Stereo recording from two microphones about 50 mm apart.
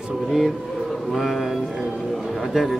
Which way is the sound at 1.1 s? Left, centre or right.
Centre.